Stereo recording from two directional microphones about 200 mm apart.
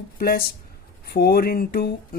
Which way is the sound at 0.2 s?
50° left (ahead or behind).